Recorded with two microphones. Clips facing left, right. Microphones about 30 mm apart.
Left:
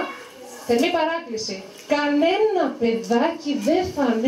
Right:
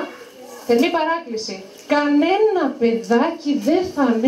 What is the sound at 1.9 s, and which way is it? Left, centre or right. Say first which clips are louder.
Speech: right 3 dB; right.